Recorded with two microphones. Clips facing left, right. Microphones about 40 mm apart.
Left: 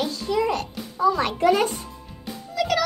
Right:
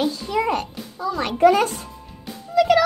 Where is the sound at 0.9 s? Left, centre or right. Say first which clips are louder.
Left 4 dB; centre.